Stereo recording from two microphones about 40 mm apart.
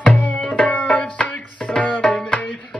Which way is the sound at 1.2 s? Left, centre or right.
Left.